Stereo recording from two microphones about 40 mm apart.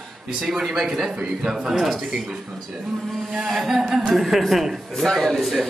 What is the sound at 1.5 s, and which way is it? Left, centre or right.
Speech, centre.